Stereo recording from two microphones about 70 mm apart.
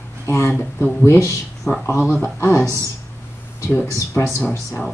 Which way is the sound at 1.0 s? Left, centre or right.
Left.